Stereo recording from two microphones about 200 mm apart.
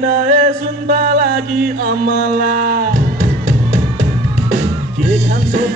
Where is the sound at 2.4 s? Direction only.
45° right (ahead or behind).